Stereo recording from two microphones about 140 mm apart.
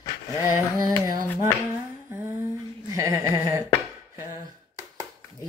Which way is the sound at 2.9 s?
20° right (ahead or behind).